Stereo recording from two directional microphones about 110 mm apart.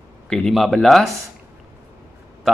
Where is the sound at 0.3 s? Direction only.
5° left (ahead or behind).